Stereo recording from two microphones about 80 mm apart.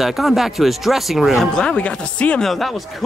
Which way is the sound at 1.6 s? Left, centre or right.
Centre.